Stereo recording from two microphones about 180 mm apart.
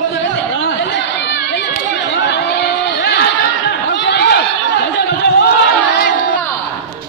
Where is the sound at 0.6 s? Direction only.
70° left (ahead or behind).